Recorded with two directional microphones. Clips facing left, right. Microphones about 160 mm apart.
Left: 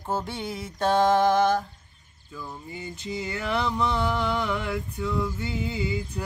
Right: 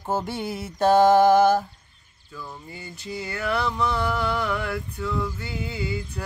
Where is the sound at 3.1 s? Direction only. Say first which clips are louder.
Right 1 dB; 20° left (ahead or behind).